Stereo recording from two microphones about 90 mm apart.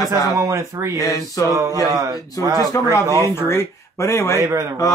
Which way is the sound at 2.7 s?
35° left (ahead or behind).